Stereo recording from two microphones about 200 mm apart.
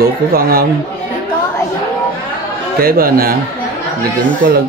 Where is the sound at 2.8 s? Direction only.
45° right (ahead or behind).